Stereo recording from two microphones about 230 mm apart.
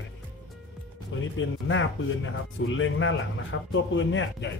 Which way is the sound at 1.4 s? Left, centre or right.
Left.